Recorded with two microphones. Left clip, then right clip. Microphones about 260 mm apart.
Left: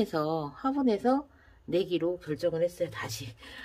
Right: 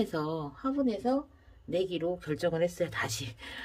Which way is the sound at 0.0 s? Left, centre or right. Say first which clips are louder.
Left 3 dB; centre.